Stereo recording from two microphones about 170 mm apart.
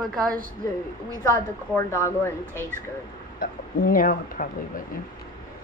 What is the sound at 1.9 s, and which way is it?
Speech, 15° left (ahead or behind).